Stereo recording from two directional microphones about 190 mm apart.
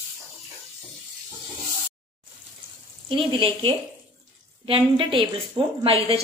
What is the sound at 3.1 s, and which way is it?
A woman's voice, 25° right (ahead or behind).